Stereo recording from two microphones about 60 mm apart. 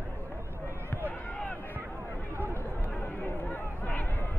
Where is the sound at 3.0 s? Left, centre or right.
Left.